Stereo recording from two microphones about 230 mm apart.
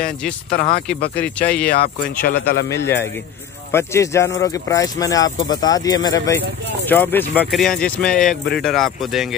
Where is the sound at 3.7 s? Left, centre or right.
Centre.